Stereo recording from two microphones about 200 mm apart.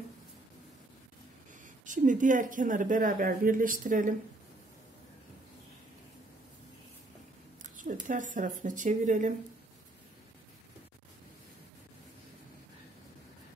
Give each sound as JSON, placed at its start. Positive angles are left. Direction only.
{"t": 1.9, "sound": "a woman's voice", "side_deg": -40}
{"t": 7.6, "sound": "speech", "side_deg": -40}